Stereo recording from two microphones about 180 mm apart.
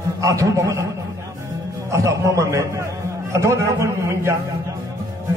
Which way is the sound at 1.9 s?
15° right (ahead or behind).